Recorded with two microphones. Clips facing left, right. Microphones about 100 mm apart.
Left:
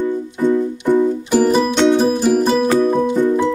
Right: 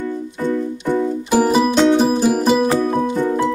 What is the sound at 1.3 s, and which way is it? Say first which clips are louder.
Music: right 1 dB; 5° right (ahead or behind).